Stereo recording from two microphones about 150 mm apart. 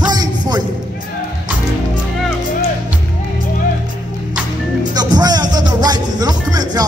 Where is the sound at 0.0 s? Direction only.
25° right (ahead or behind).